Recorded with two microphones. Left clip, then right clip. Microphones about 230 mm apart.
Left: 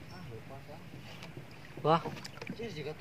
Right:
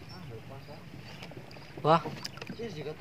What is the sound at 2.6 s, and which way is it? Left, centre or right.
Speech, centre.